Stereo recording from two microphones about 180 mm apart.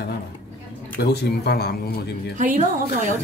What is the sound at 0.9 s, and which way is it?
Speech, 65° left (ahead or behind).